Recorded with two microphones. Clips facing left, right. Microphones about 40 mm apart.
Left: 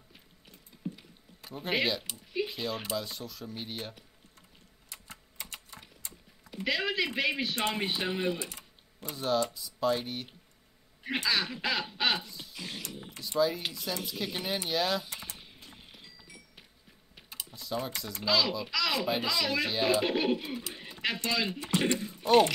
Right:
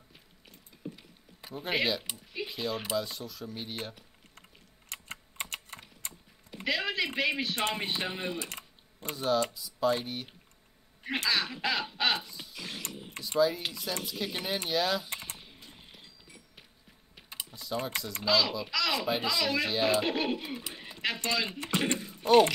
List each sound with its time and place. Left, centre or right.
0.8 s a sound: centre
1.5 s speech: centre
4.4 s typing: right
6.5 s speech: centre
11.2 s a sound: centre
13.4 s speech: centre
15.3 s a sound: centre
17.5 s typing: centre
18.2 s speech: centre
21.7 s speech: right
22.0 s speech: centre